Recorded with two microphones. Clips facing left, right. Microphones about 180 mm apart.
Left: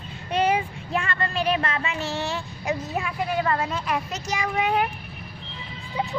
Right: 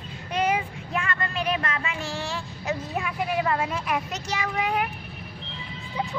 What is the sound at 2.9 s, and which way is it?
A woman's voice, 5° right (ahead or behind).